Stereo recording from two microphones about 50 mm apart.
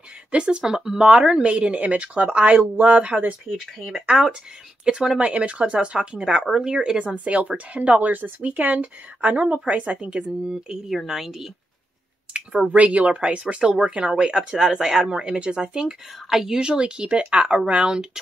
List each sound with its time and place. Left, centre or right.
0.3 s speech: centre
3.8 s speech: centre
7.2 s speech: right; by 11.5 s centre
12.7 s speech: right